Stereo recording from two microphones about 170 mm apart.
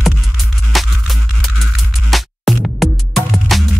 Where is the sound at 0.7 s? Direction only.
Centre (ahead or behind).